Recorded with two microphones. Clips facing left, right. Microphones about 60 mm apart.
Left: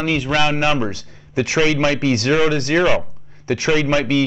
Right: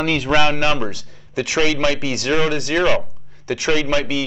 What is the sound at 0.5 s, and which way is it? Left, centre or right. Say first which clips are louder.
Speech: left 1 dB; centre.